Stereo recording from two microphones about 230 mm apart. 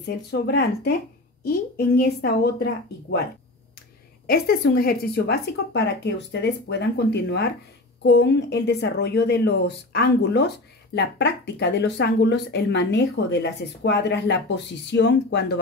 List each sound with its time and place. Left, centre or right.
0.0 s speech: left
4.3 s speech: left